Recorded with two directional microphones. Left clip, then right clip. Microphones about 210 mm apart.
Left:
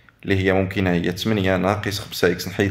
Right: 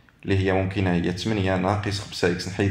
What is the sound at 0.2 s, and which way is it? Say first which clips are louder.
Speech: left 4 dB; 30° left (ahead or behind).